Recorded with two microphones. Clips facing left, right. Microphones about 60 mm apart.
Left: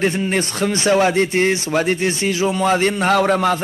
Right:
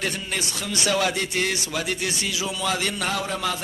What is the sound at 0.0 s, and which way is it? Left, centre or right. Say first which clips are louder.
A man's voice: left 10 dB; left.